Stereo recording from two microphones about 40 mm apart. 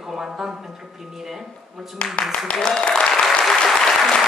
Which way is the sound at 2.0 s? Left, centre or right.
Left.